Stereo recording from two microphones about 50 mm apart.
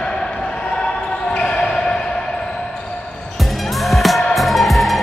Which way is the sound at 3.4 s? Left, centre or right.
Centre.